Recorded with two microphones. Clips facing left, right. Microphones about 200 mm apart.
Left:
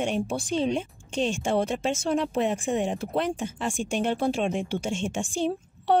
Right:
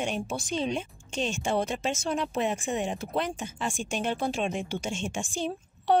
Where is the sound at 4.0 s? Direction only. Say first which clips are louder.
Left 4 dB; 65° left (ahead or behind).